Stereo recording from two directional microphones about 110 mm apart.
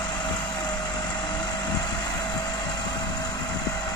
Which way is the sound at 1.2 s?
40° left (ahead or behind).